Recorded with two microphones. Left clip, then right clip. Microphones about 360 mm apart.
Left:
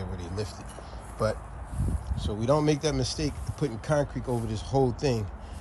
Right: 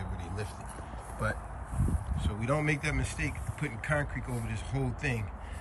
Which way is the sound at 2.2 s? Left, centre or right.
Centre.